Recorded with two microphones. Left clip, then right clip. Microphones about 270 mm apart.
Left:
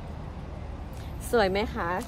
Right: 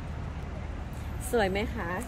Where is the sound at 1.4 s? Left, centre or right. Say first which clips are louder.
Left 4 dB; centre.